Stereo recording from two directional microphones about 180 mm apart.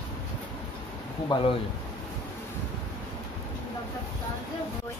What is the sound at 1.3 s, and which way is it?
Speech, 25° left (ahead or behind).